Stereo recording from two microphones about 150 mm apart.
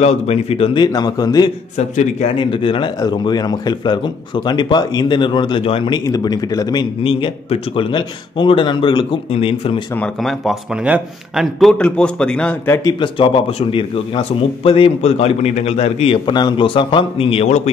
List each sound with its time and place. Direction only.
0.0 s speech: 45° left (ahead or behind)
0.7 s speech: 25° left (ahead or behind)
6.0 s speech: 25° left (ahead or behind)
9.9 s speech: 5° left (ahead or behind)
11.8 s a man's voice: 5° left (ahead or behind)
13.0 s speech: 35° left (ahead or behind)